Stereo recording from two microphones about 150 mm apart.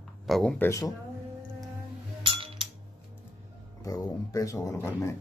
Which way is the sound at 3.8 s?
25° left (ahead or behind).